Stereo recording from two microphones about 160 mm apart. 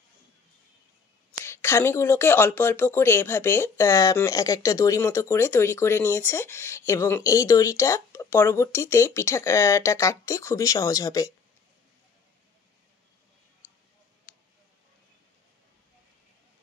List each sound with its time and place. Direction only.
1.3 s speech: 15° left (ahead or behind)